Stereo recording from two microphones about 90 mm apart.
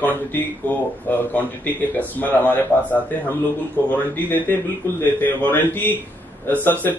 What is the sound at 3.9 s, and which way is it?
Speech, 20° left (ahead or behind).